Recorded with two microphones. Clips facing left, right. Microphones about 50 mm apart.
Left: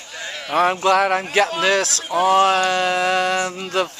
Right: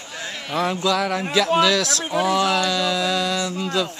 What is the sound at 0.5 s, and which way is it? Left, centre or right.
Speech, left.